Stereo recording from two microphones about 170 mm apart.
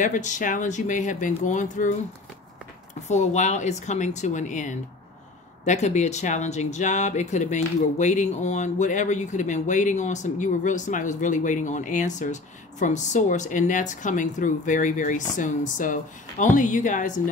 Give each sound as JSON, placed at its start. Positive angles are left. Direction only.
{"t": 0.0, "sound": "speech", "side_deg": 45}